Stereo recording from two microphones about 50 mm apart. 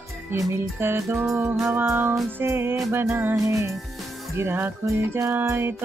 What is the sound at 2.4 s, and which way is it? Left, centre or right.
Music, right.